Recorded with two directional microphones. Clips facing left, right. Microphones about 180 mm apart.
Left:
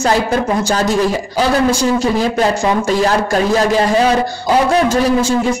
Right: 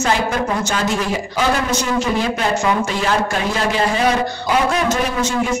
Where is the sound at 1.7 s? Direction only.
35° left (ahead or behind).